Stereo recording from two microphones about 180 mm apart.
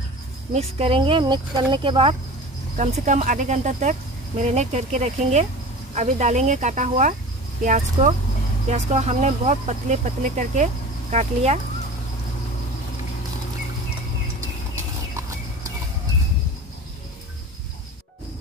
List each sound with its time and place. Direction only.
0.5 s speech: 35° right (ahead or behind)
2.8 s speech: 40° right (ahead or behind)